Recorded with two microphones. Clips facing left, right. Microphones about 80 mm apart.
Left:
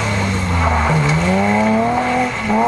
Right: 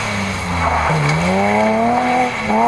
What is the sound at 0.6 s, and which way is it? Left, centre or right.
Vehicle, centre.